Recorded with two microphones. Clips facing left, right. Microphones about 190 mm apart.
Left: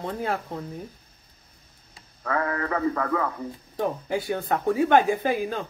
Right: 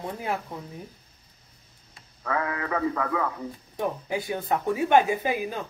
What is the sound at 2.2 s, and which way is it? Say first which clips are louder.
Speech: left 2 dB; 10° right (ahead or behind).